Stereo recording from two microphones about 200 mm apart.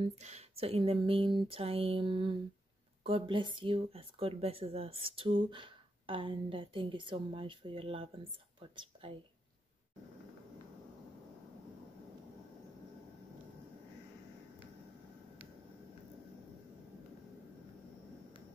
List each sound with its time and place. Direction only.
0.0 s speech: 35° right (ahead or behind)